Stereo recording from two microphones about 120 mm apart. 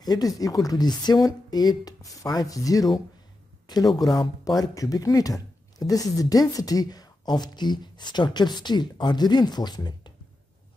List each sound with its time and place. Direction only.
0.0 s speech: 35° left (ahead or behind)
3.8 s speech: centre (ahead or behind)
4.1 s speech: 35° left (ahead or behind)